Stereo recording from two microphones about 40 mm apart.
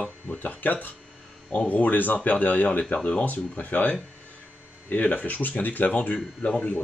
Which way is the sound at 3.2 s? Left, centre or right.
Left.